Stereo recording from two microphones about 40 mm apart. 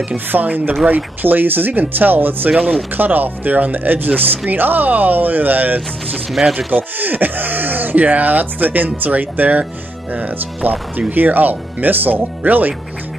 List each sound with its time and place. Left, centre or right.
0.3 s speech: right
11.1 s speech: right